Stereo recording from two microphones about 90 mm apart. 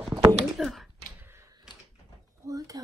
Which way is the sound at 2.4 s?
40° right (ahead or behind).